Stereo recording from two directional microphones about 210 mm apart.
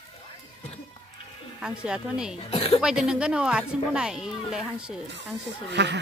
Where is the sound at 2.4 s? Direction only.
30° left (ahead or behind).